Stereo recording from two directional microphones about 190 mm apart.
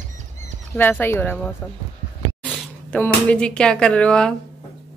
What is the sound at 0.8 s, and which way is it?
Speech, 10° left (ahead or behind).